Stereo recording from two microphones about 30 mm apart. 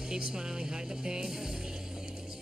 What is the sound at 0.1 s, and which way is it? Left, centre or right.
Speech, right.